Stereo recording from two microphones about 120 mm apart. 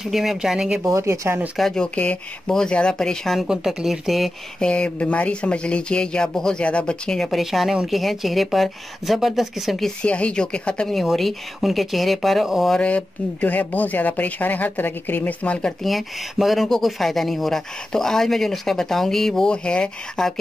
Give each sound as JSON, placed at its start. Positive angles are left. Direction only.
{"t": 0.0, "sound": "speech", "side_deg": 0}
{"t": 0.8, "sound": "speech", "side_deg": -25}
{"t": 1.6, "sound": "speech", "side_deg": 5}